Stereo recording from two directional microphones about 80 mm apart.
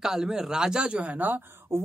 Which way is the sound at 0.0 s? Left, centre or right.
Centre.